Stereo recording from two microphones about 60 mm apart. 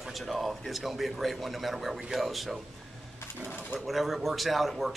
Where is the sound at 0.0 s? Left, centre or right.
Centre.